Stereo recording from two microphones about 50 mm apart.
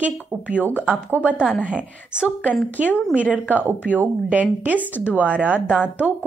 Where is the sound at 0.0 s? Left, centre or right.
Right.